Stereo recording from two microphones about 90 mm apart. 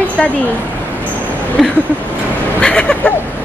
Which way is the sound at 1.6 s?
5° right (ahead or behind).